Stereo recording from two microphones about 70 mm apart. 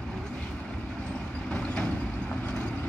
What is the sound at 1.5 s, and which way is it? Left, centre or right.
Vehicle, centre.